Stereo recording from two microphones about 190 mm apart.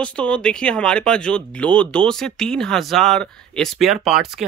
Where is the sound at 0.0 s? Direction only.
5° left (ahead or behind).